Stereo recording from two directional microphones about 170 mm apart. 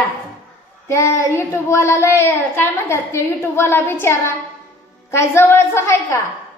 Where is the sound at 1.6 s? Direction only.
15° left (ahead or behind).